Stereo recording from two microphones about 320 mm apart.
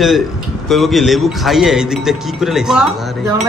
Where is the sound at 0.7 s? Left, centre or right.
Centre.